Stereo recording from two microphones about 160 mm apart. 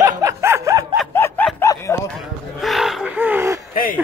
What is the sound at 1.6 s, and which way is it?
Dog, 20° left (ahead or behind).